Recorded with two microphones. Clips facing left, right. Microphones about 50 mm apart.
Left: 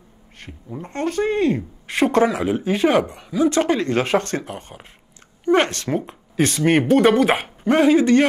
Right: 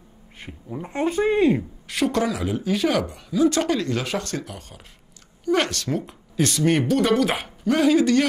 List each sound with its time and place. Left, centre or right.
0.4 s speech: centre
1.9 s a woman's voice: left